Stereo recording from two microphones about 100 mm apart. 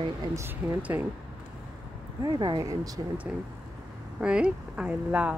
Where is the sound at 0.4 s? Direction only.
20° right (ahead or behind).